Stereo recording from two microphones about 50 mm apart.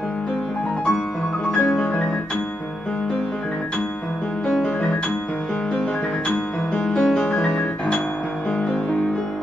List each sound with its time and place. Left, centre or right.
1.5 s music: centre
4.5 s music: centre